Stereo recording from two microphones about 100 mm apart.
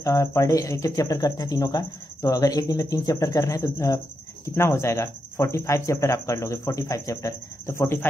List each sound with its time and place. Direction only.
0.0 s speech: 30° left (ahead or behind)